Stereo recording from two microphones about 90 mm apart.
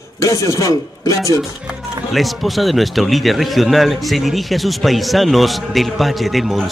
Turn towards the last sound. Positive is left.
turn(degrees=0)  # may be behind; listen again after turning